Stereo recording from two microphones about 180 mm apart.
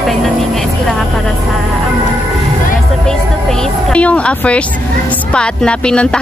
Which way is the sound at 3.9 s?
5° left (ahead or behind).